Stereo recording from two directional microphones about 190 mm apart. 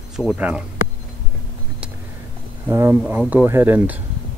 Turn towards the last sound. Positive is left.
turn(degrees=-10)  # may be behind; listen again after turning